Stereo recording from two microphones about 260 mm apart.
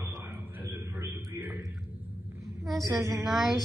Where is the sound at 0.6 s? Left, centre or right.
Centre.